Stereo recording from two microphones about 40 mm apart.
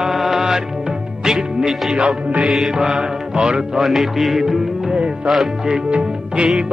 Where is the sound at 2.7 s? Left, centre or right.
Centre.